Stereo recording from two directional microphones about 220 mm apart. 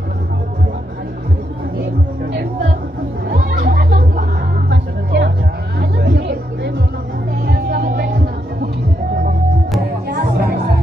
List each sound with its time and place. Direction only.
3.3 s music: 45° right (ahead or behind)